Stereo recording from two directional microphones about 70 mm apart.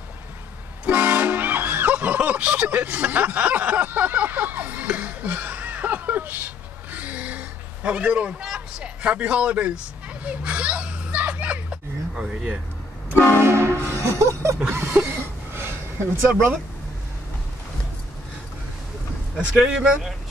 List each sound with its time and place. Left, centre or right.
0.8 s toot: right
13.4 s train horn: right
14.7 s a sound: right
19.3 s speech: centre